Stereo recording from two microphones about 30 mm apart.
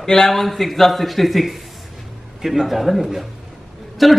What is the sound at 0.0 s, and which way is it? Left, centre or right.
Speech, centre.